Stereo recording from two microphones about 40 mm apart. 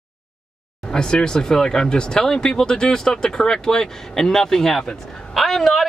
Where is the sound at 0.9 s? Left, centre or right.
Centre.